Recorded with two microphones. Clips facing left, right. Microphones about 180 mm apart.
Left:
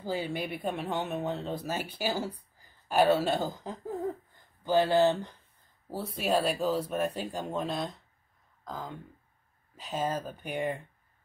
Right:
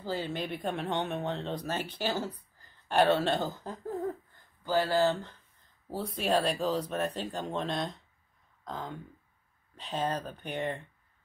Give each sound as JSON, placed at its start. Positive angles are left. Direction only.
{"t": 0.0, "sound": "speech", "side_deg": 10}
{"t": 5.9, "sound": "speech", "side_deg": 0}